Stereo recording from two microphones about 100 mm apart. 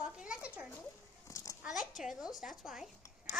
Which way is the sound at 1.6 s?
5° right (ahead or behind).